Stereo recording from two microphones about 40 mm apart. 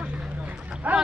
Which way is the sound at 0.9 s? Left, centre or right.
Right.